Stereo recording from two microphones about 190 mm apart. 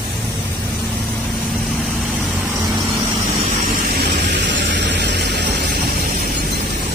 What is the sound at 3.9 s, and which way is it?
Vehicle, 65° right (ahead or behind).